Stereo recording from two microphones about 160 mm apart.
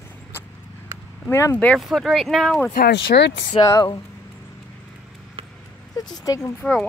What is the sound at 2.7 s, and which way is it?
Speech, 90° left.